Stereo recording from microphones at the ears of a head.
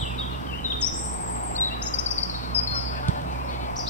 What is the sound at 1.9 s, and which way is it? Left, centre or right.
Insect, left.